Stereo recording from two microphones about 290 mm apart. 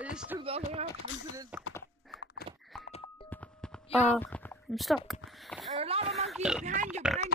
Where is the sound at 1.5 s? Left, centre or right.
Centre.